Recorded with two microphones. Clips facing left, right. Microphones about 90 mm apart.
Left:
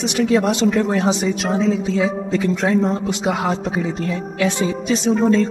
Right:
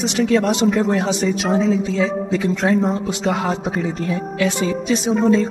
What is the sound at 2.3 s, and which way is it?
Speech, centre (ahead or behind).